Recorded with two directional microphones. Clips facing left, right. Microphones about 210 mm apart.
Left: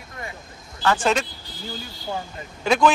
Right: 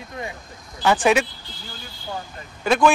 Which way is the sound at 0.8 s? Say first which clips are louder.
Right 3 dB; 15° right (ahead or behind).